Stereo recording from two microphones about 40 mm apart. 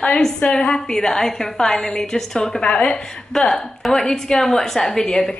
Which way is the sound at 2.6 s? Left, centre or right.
Left.